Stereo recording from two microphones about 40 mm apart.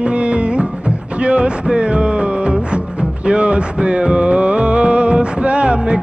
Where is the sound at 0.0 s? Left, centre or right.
Right.